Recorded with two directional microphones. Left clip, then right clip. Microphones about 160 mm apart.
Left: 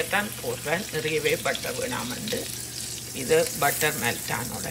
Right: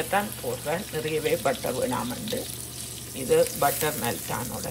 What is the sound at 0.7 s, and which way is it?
Speech, centre (ahead or behind).